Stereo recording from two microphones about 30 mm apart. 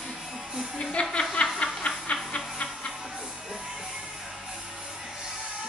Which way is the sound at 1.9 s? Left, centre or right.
Left.